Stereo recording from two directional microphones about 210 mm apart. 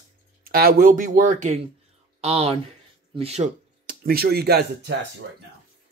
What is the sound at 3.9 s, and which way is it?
Speech, 45° right (ahead or behind).